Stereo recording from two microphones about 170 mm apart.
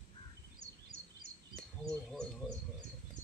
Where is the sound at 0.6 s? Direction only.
55° right (ahead or behind).